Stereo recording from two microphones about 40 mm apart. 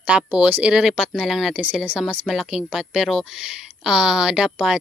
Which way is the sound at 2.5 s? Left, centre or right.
Centre.